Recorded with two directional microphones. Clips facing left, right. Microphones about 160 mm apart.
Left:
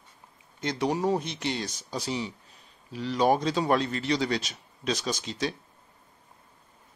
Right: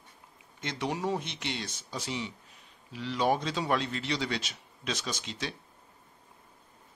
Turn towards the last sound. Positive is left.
turn(degrees=40)  # may be behind; listen again after turning